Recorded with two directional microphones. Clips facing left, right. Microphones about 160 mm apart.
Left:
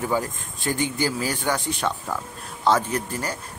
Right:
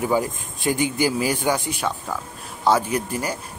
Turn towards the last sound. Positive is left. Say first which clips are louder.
# right 3 dB
turn(degrees=-10)  # may be behind; listen again after turning